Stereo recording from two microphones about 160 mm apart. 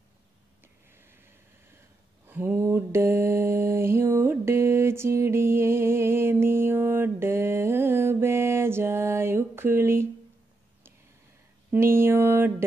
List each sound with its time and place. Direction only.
0.9 s a sound: 15° right (ahead or behind)
2.2 s mantra: 15° right (ahead or behind)
11.7 s mantra: 15° right (ahead or behind)